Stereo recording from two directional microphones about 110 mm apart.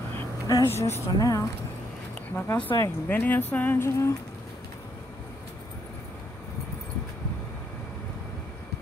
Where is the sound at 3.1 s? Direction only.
15° left (ahead or behind).